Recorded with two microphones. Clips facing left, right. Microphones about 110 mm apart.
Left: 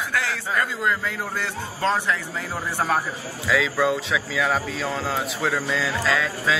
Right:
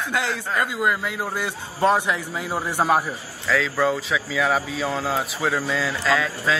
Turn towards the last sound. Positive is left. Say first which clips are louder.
# right 1 dB
turn(degrees=0)  # may be behind; listen again after turning